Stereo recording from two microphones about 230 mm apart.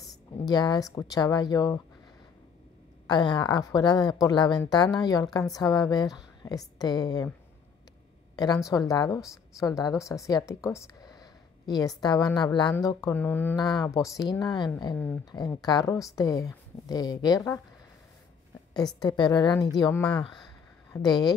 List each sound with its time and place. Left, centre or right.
0.5 s speech: centre
3.1 s speech: centre
8.4 s a woman's voice: centre
18.9 s a woman's voice: centre